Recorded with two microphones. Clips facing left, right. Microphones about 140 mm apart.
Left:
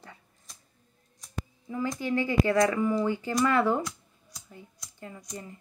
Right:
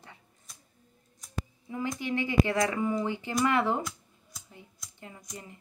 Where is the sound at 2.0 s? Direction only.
20° right (ahead or behind).